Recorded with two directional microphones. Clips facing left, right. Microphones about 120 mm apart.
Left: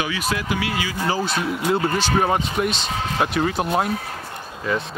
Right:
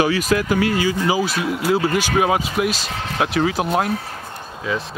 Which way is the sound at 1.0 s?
10° right (ahead or behind).